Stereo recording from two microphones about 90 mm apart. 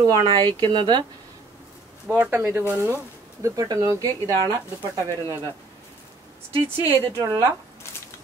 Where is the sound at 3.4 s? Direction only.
40° right (ahead or behind).